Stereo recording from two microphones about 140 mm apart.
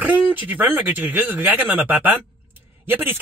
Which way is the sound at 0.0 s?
10° right (ahead or behind).